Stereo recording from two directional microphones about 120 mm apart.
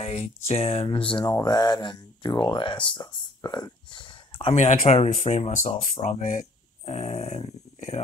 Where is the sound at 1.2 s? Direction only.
35° left (ahead or behind).